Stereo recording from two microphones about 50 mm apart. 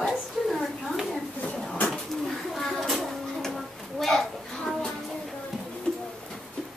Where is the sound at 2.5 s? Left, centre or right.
Centre.